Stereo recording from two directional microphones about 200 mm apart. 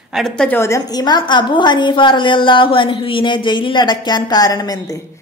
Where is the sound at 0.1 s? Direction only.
Centre (ahead or behind).